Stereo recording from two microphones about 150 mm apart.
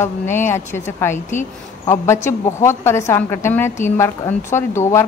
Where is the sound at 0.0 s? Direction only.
15° left (ahead or behind).